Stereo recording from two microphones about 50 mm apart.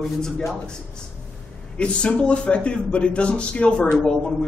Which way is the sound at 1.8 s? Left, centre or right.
Left.